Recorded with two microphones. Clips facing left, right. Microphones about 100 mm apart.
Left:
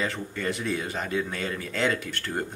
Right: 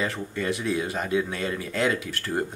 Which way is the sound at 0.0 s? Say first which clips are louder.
Right 1 dB; centre (ahead or behind).